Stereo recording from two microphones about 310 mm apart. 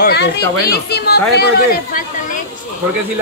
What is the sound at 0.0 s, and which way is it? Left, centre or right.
Speech, left.